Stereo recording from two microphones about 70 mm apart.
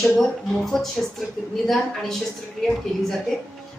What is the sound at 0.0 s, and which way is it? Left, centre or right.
Speech, centre.